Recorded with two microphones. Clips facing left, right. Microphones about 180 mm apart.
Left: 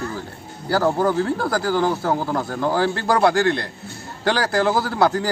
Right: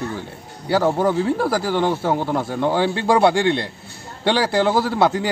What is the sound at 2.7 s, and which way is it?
Speech, 20° right (ahead or behind).